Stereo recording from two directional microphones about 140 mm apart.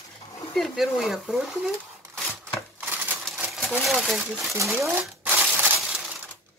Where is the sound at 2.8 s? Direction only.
10° right (ahead or behind).